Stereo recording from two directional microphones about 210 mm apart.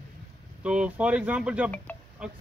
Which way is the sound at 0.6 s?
5° right (ahead or behind).